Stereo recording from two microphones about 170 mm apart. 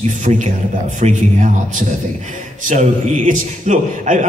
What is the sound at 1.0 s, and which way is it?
A man's voice, 45° right (ahead or behind).